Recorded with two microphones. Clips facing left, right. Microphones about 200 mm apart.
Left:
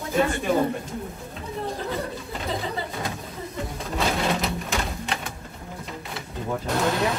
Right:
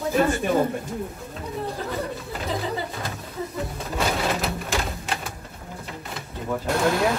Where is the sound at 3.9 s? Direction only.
Centre (ahead or behind).